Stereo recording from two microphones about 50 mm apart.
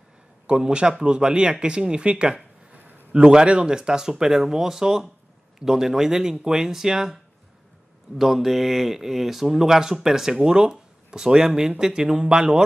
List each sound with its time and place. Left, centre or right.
0.5 s speech: centre
8.2 s speech: centre